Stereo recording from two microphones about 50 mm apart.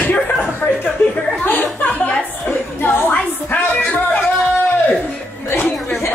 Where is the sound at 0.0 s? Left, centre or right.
Left.